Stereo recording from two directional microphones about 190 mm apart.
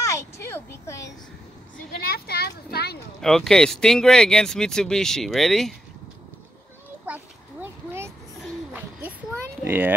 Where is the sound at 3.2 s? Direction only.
Centre (ahead or behind).